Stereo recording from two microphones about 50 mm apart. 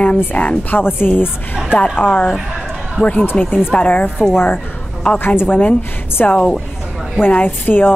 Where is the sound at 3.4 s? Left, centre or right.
Left.